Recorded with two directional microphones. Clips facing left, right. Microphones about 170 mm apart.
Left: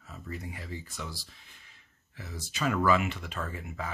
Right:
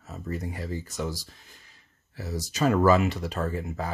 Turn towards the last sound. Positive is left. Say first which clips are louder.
# right 7 dB
turn(degrees=-40)  # may be behind; listen again after turning